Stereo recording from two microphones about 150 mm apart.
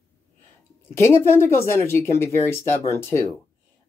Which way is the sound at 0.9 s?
15° left (ahead or behind).